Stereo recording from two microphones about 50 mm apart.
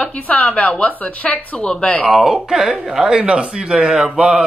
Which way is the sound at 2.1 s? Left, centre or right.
Centre.